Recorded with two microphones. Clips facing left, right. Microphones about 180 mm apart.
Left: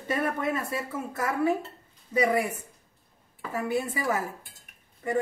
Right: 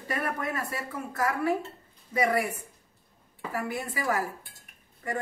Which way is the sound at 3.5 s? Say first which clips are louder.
Left 4 dB; 20° left (ahead or behind).